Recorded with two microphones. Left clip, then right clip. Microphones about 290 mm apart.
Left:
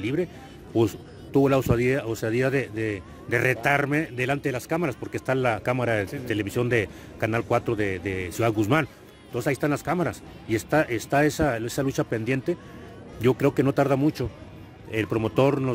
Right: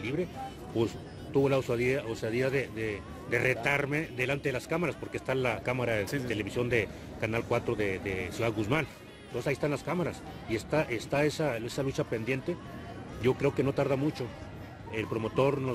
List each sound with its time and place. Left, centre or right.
0.0 s speech: left